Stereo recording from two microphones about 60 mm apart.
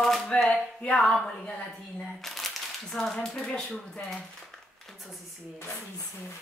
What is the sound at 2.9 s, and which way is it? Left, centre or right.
Speech, centre.